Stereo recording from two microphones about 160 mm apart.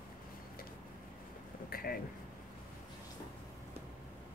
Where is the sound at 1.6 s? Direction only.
70° left (ahead or behind).